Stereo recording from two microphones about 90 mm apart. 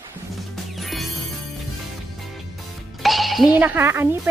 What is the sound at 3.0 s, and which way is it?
Music, centre (ahead or behind).